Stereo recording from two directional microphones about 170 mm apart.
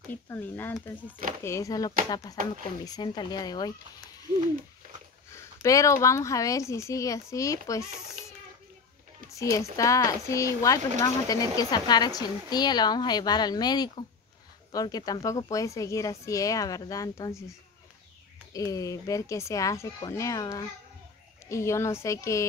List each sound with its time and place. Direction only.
0.1 s a woman's voice: 10° left (ahead or behind)
5.3 s speech: 20° left (ahead or behind)
9.3 s speech: 20° left (ahead or behind)
18.5 s a woman's voice: 20° left (ahead or behind)